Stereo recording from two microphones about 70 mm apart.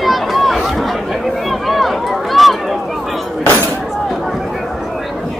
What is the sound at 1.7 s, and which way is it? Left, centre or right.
Run, centre.